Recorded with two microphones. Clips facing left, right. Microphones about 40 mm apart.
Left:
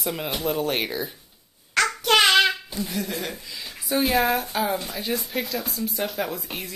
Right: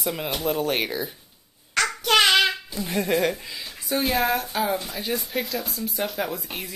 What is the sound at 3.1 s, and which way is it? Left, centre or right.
Speech, right.